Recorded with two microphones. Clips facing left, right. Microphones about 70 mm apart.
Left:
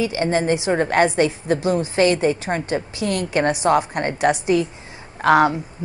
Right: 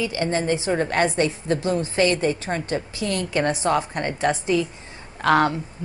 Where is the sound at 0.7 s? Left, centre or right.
Left.